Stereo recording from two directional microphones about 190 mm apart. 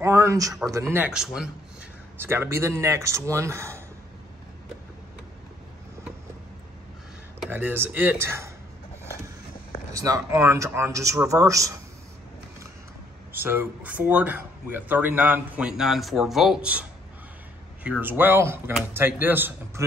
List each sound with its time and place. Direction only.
0.0 s a sound: 15° right (ahead or behind)
0.7 s speech: 15° right (ahead or behind)
7.3 s speech: 10° right (ahead or behind)
9.9 s speech: 15° right (ahead or behind)
13.3 s speech: 10° right (ahead or behind)
17.8 s speech: 10° right (ahead or behind)